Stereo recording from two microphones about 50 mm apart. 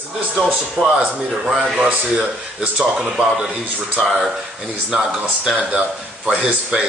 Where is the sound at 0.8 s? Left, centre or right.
Right.